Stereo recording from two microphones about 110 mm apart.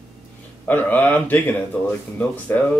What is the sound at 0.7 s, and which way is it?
Speech, 15° left (ahead or behind).